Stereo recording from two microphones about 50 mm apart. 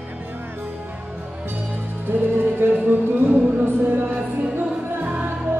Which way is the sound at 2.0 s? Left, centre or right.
Right.